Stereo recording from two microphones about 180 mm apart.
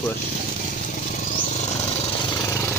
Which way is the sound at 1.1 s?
45° left (ahead or behind).